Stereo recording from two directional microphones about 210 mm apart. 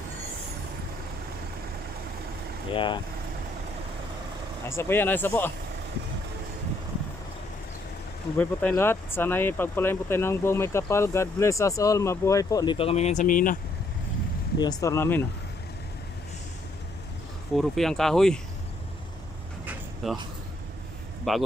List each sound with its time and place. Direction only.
2.7 s speech: 25° left (ahead or behind)
4.6 s speech: 10° left (ahead or behind)
8.4 s speech: 10° left (ahead or behind); by 13.6 s 40° left (ahead or behind)
14.6 s speech: 15° left (ahead or behind)
17.6 s speech: centre (ahead or behind)
19.6 s a sound: centre (ahead or behind)
21.3 s speech: centre (ahead or behind)